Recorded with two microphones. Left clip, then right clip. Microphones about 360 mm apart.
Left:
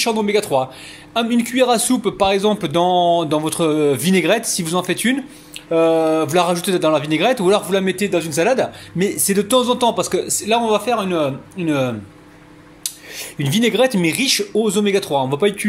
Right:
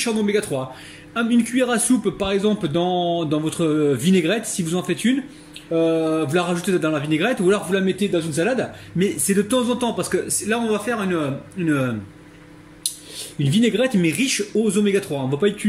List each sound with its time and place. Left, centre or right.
0.0 s a man's voice: centre
2.8 s speech: left
3.4 s a man's voice: centre
13.1 s a man's voice: centre